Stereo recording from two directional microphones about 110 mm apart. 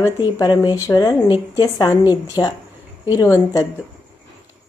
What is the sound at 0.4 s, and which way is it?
Speech, 35° left (ahead or behind).